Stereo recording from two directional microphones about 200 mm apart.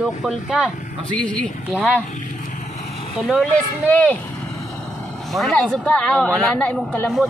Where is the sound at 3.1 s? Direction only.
Centre (ahead or behind).